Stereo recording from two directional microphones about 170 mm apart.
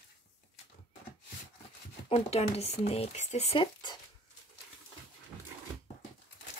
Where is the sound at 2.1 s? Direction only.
35° left (ahead or behind).